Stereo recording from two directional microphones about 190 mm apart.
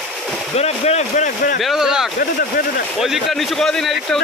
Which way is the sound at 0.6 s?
35° left (ahead or behind).